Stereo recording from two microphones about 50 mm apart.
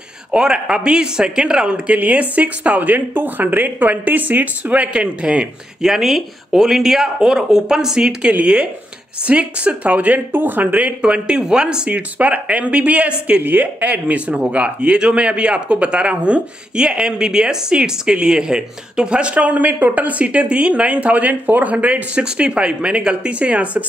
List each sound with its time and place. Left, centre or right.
0.3 s speech: centre
2.0 s speech: right
5.8 s speech: centre; by 10.2 s right
10.3 s speech: right
11.0 s speech: centre
11.9 s speech: right
13.4 s speech: right